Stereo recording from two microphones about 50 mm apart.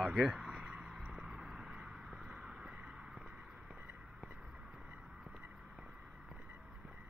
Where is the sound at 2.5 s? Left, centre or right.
Centre.